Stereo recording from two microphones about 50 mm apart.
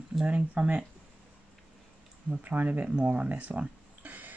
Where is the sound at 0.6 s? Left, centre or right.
Centre.